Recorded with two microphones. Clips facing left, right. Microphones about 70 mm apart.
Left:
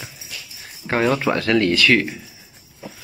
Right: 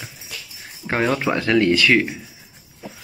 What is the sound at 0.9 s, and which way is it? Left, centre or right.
Speech, centre.